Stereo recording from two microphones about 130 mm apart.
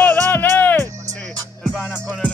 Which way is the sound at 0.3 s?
15° left (ahead or behind).